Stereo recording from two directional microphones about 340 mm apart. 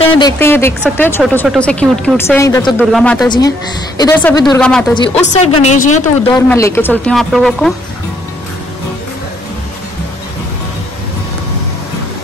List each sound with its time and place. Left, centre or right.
0.2 s a woman's voice: centre
5.2 s a woman's voice: centre
6.3 s a woman's voice: centre